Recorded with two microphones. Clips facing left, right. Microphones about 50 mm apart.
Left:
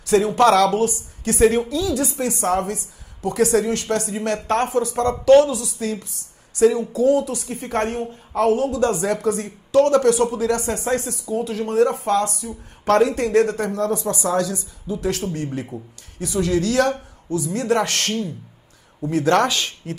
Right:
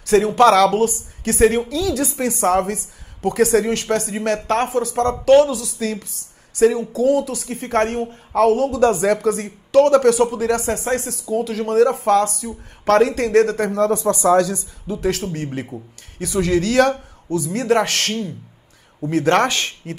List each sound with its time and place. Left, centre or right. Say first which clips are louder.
0.0 s speech: right 2 dB; right
1.7 s speech: right 1 dB; right
6.1 s a sound: right 2 dB; right
7.0 s speech: even; right
8.4 s speech: right 3 dB; right